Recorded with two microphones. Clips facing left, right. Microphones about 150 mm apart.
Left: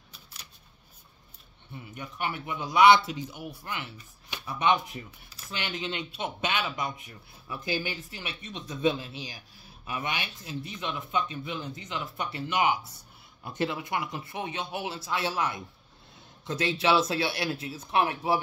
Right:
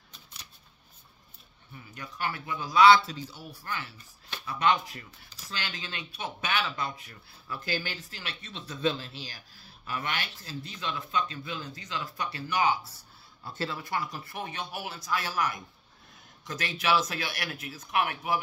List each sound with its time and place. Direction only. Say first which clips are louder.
1.7 s a man's voice: left 3 dB; 20° left (ahead or behind)